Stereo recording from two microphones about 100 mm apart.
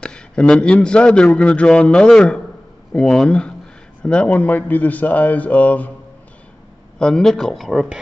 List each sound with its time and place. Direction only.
0.0 s a man's voice: 10° left (ahead or behind)
7.0 s speech: 5° left (ahead or behind)